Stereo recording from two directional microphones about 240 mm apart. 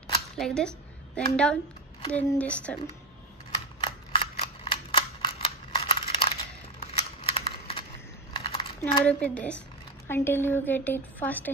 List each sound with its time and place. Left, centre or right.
0.4 s a woman's voice: centre
3.8 s a sound: left
8.3 s typing: centre
9.0 s a woman's voice: centre